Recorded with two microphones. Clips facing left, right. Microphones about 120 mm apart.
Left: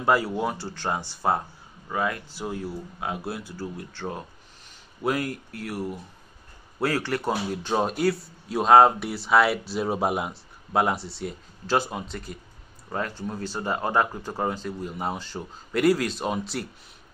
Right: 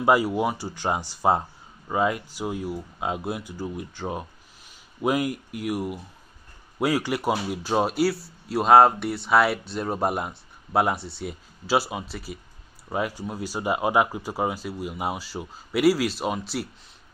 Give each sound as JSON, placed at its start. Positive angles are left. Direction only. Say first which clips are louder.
{"t": 0.0, "sound": "speech", "louder": "right 2 dB", "side_deg": -15}